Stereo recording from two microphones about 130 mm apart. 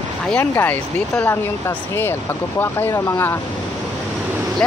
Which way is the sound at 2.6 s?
20° left (ahead or behind).